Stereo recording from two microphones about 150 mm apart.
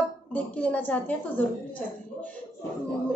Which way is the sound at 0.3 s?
10° left (ahead or behind).